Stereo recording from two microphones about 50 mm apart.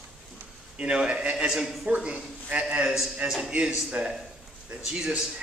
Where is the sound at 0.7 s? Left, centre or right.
Right.